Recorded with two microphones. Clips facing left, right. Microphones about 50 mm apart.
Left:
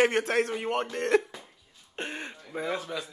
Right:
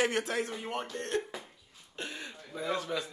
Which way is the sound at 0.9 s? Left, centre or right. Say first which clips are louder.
Left 12 dB; left.